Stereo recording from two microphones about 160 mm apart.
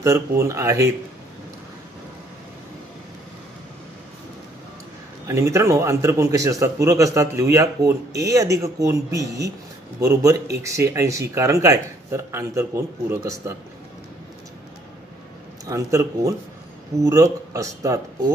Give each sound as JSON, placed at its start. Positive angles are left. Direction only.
{"t": 0.4, "sound": "a man's voice", "side_deg": -20}
{"t": 5.2, "sound": "a man's voice", "side_deg": -20}
{"t": 15.6, "sound": "a man's voice", "side_deg": -20}